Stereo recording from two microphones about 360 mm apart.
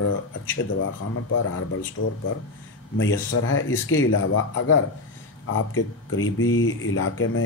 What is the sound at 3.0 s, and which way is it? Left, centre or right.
Speech, left.